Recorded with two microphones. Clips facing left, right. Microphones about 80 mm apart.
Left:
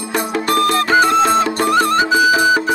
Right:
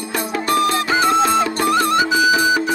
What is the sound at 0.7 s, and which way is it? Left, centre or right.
Music, left.